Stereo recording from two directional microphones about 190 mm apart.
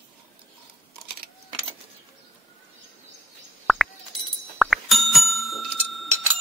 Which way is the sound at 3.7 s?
Centre (ahead or behind).